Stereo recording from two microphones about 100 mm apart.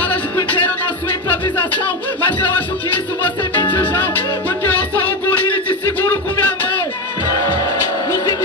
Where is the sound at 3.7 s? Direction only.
15° left (ahead or behind).